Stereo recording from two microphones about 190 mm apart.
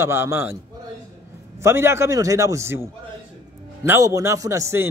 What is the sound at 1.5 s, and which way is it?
A man's voice, 15° right (ahead or behind).